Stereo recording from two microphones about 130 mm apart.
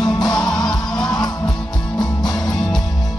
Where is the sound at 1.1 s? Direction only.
5° left (ahead or behind).